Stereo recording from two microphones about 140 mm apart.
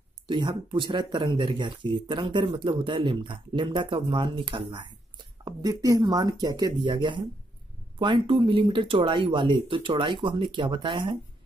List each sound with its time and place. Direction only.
0.3 s speech: 35° right (ahead or behind)